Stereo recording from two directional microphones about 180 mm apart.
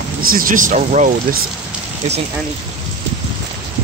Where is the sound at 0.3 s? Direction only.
50° right (ahead or behind).